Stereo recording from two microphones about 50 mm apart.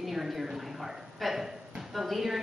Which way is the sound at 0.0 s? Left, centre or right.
Centre.